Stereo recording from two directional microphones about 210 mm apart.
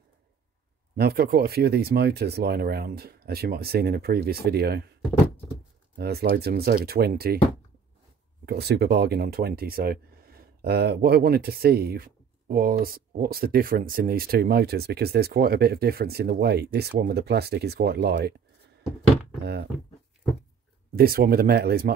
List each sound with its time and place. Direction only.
0.9 s speech: 50° right (ahead or behind)
5.9 s speech: 50° right (ahead or behind)
8.5 s speech: 50° right (ahead or behind)
19.4 s speech: 50° right (ahead or behind)
20.9 s speech: 45° right (ahead or behind)